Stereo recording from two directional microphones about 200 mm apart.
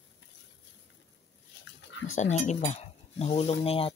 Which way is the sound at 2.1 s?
35° left (ahead or behind).